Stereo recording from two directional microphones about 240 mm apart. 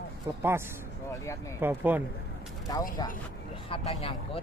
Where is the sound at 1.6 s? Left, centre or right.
Centre.